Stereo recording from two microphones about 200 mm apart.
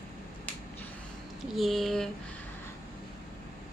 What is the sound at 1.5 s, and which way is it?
Speech, centre (ahead or behind).